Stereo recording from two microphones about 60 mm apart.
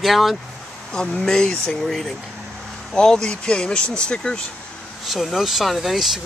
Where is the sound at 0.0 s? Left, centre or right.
Centre.